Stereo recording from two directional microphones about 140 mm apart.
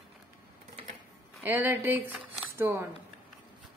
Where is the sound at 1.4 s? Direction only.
15° right (ahead or behind).